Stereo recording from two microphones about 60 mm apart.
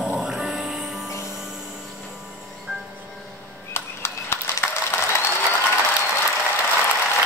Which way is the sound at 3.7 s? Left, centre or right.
Left.